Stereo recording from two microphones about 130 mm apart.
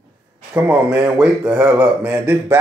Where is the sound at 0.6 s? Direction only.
10° right (ahead or behind).